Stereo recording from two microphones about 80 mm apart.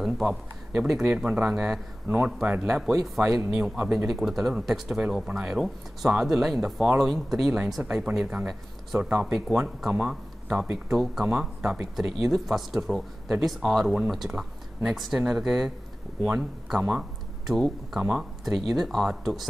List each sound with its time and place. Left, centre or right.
0.0 s speech: centre
2.0 s speech: centre
2.6 s speech: centre